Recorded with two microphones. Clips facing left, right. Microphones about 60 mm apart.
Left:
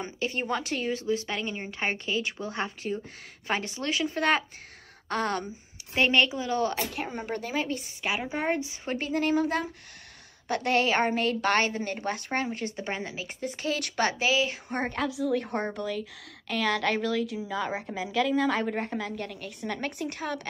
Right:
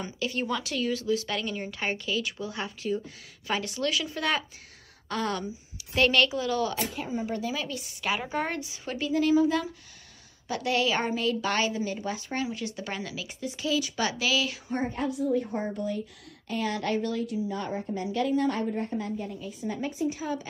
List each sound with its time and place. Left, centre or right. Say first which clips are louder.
0.0 s speech: even; left
5.9 s a woman's voice: even; left
6.9 s a woman's voice: right 1 dB; left
8.0 s a woman's voice: right 2 dB; centre
8.5 s a woman's voice: left 2 dB; left
14.7 s a woman's voice: even; left